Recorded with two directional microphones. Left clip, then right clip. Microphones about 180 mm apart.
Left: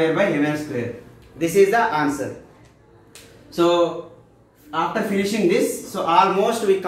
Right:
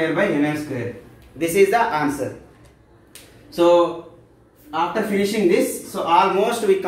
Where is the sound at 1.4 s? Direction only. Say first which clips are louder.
Even; 25° right (ahead or behind).